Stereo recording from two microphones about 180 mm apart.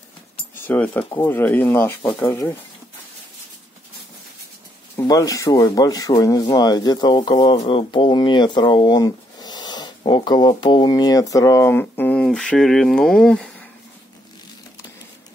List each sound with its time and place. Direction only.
0.7 s speech: 10° left (ahead or behind)
4.9 s speech: 20° left (ahead or behind)